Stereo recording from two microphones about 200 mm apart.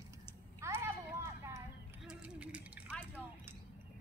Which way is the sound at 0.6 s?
10° right (ahead or behind).